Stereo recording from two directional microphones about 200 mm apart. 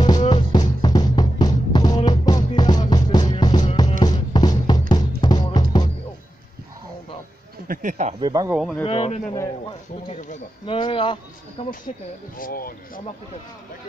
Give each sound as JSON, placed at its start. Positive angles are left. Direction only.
{"t": 0.2, "sound": "music", "side_deg": 25}
{"t": 7.6, "sound": "a sound", "side_deg": -40}
{"t": 8.2, "sound": "speech", "side_deg": -20}
{"t": 8.5, "sound": "speech", "side_deg": 0}
{"t": 8.8, "sound": "speech", "side_deg": 30}
{"t": 10.7, "sound": "speech", "side_deg": 25}
{"t": 12.4, "sound": "speech", "side_deg": 45}